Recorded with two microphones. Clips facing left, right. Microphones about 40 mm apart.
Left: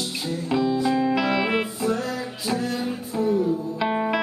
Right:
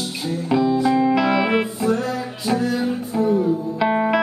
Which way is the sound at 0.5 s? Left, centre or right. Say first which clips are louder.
Right 4 dB; centre.